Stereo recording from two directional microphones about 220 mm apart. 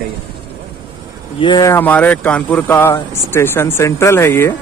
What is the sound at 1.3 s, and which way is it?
Speech, 20° left (ahead or behind).